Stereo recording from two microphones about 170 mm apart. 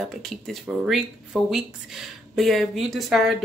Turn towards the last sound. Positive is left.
turn(degrees=0)  # may be behind; listen again after turning